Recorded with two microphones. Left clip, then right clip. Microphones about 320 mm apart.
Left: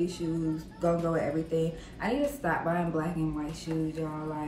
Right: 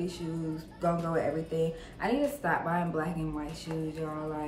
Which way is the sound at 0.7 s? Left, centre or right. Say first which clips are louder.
Left 1 dB; centre.